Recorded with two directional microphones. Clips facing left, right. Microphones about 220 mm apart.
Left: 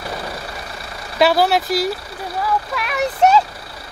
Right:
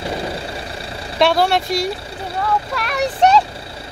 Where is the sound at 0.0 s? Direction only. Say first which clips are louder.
Right 4 dB; 25° right (ahead or behind).